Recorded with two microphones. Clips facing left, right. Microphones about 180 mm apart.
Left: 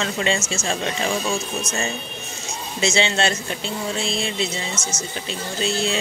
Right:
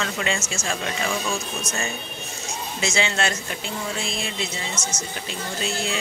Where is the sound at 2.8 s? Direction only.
25° left (ahead or behind).